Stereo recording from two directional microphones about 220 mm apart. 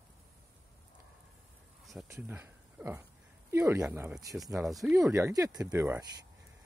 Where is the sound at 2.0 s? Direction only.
10° right (ahead or behind).